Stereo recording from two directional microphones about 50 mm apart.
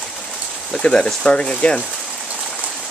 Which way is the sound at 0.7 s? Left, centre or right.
Centre.